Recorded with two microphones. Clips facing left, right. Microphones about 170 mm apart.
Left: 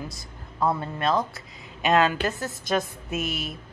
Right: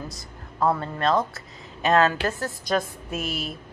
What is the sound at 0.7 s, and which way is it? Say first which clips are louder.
A woman's voice: right 2 dB; 10° left (ahead or behind).